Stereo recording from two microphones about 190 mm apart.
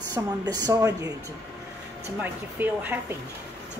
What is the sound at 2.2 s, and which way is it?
Speech, 10° right (ahead or behind).